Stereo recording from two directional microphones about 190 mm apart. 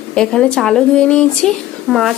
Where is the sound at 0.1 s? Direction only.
5° left (ahead or behind).